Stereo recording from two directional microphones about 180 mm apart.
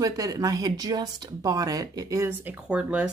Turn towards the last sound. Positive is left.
turn(degrees=-5)  # may be behind; listen again after turning